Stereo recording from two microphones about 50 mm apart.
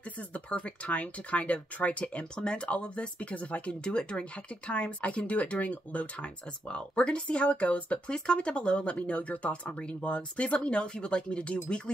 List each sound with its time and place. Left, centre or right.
0.2 s speech: left